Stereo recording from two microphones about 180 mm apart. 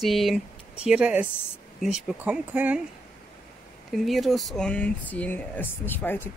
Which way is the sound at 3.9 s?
Centre (ahead or behind).